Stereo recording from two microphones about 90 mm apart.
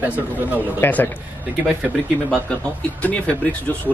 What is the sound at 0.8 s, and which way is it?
Speech, 20° left (ahead or behind).